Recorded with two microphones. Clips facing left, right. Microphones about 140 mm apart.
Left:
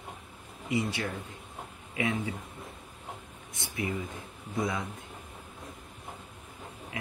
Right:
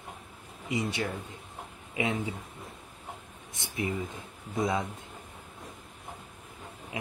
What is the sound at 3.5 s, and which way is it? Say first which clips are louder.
Speech: right 1 dB; 20° right (ahead or behind).